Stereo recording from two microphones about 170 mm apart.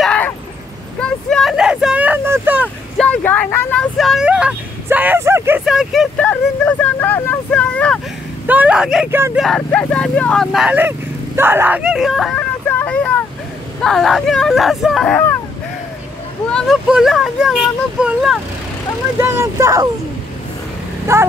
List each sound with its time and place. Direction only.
0.0 s vehicle: 5° left (ahead or behind); by 2.7 s 10° right (ahead or behind)
3.0 s vehicle: 5° left (ahead or behind); by 5.6 s 15° right (ahead or behind)
5.7 s speech: centre (ahead or behind)
8.5 s speech: 10° right (ahead or behind)
9.4 s speech: 5° left (ahead or behind)
12.6 s vehicle: 10° left (ahead or behind)
13.8 s speech: centre (ahead or behind)
16.4 s speech: centre (ahead or behind)
19.1 s speech: 15° right (ahead or behind)
21.1 s speech: 15° right (ahead or behind)